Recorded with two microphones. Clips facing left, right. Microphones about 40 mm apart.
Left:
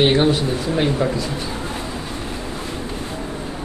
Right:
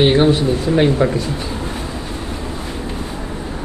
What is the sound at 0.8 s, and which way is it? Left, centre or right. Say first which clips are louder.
Speech: right 4 dB; centre.